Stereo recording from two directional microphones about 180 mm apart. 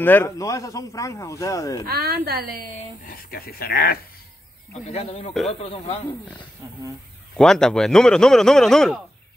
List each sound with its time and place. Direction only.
0.0 s speech: 10° left (ahead or behind)
1.9 s a woman's voice: 60° right (ahead or behind)
3.1 s speech: 55° left (ahead or behind)
4.8 s speech: 35° left (ahead or behind)
7.3 s a man's voice: 5° left (ahead or behind)